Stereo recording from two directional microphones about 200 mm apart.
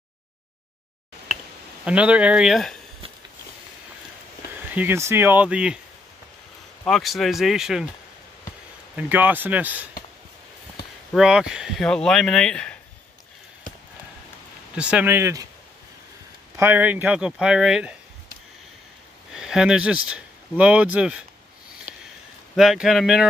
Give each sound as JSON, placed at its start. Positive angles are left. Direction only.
{"t": 1.9, "sound": "speech", "side_deg": -5}
{"t": 4.7, "sound": "speech", "side_deg": -10}
{"t": 6.8, "sound": "speech", "side_deg": 0}
{"t": 8.9, "sound": "speech", "side_deg": -10}
{"t": 11.1, "sound": "speech", "side_deg": -5}
{"t": 14.8, "sound": "speech", "side_deg": -5}
{"t": 16.5, "sound": "speech", "side_deg": -10}
{"t": 19.3, "sound": "speech", "side_deg": -5}
{"t": 22.6, "sound": "speech", "side_deg": 0}